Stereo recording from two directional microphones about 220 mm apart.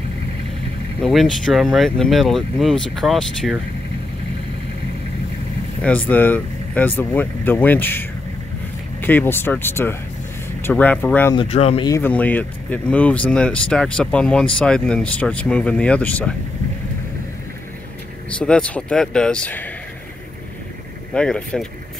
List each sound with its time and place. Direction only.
1.0 s speech: centre (ahead or behind)
5.8 s speech: 5° left (ahead or behind)
11.3 s speech: 25° left (ahead or behind)
11.9 s speech: 10° left (ahead or behind)
18.4 s speech: 5° left (ahead or behind)
21.1 s speech: 5° left (ahead or behind)